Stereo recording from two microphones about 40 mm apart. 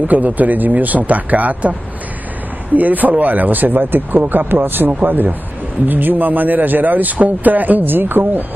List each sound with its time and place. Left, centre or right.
0.1 s speech: right
2.7 s speech: right